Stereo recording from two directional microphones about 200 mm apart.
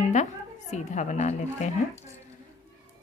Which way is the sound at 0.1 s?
35° left (ahead or behind).